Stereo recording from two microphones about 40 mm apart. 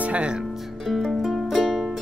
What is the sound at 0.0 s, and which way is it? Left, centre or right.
Speech, right.